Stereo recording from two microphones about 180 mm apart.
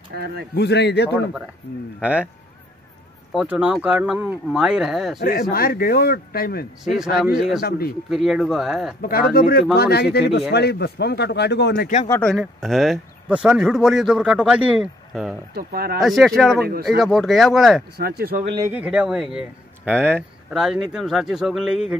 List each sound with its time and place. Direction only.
0.6 s speech: 70° left (ahead or behind)
1.1 s speech: 10° right (ahead or behind)
3.3 s speech: 5° right (ahead or behind)
5.2 s a man's voice: 55° left (ahead or behind)
6.8 s speech: centre (ahead or behind)
7.6 s a man's voice: 55° left (ahead or behind)
8.1 s speech: centre (ahead or behind)
9.3 s a man's voice: 55° left (ahead or behind)
12.2 s speech: centre (ahead or behind)
15.5 s speech: 60° right (ahead or behind)
16.0 s speech: centre (ahead or behind)
17.9 s speech: 60° right (ahead or behind)
18.6 s speech: 10° right (ahead or behind)